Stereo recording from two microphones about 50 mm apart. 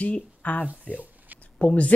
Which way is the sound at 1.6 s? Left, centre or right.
Left.